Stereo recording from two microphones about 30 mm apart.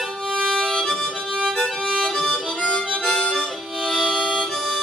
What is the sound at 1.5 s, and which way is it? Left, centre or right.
Music, centre.